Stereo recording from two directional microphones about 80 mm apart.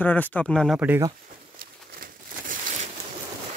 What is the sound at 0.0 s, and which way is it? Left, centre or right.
Speech, left.